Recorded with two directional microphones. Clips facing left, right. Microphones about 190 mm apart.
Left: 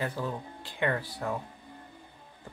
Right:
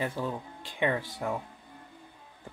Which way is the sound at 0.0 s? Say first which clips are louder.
Right 1 dB; 15° right (ahead or behind).